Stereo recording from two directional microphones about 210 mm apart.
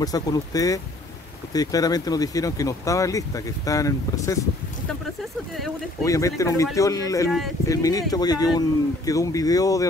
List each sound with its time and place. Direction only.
0.0 s speech: 20° left (ahead or behind)
6.0 s speech: 15° left (ahead or behind)
7.2 s speech: centre (ahead or behind)
7.6 s speech: 15° left (ahead or behind)